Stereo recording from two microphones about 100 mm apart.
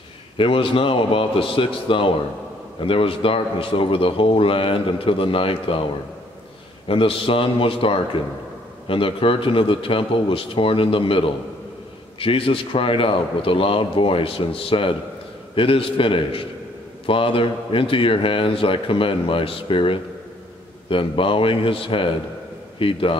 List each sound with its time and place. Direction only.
0.4 s a man's voice: 65° left (ahead or behind)
6.9 s a man's voice: 65° left (ahead or behind)